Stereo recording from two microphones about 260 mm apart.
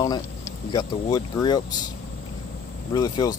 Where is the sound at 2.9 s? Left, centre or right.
Centre.